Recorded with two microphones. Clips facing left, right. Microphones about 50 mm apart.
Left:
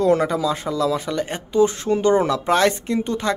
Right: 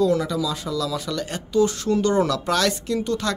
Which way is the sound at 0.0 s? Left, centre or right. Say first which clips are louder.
Left 3 dB; left.